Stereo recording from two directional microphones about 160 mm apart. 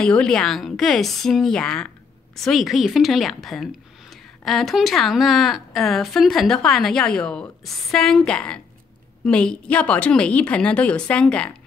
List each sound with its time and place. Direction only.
0.0 s a woman's voice: 5° left (ahead or behind)